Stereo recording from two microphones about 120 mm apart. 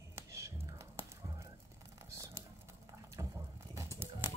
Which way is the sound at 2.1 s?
25° right (ahead or behind).